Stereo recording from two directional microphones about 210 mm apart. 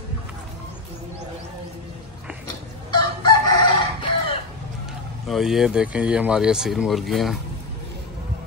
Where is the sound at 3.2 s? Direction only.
20° left (ahead or behind).